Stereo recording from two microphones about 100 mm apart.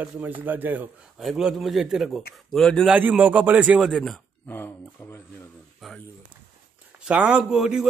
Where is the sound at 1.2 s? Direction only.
5° right (ahead or behind).